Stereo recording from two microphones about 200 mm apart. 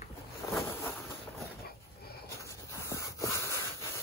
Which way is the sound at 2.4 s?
15° left (ahead or behind).